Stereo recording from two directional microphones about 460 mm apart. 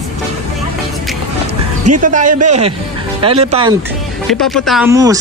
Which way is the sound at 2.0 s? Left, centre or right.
Centre.